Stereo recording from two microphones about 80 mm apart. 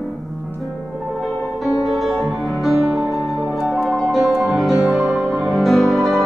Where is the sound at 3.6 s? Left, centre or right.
Centre.